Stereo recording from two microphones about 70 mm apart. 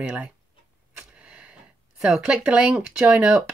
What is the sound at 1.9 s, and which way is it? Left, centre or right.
Speech, centre.